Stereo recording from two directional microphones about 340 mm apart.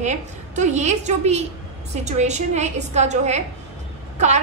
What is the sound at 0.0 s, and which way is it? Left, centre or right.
A woman's voice, centre.